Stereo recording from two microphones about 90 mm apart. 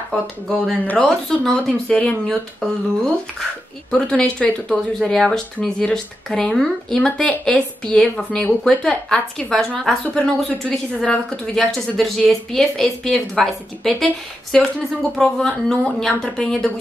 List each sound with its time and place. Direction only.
0.1 s speech: 5° left (ahead or behind)
3.9 s a woman's voice: 10° left (ahead or behind)